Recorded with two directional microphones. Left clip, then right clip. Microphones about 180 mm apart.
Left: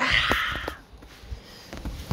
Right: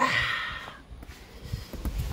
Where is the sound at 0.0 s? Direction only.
10° right (ahead or behind).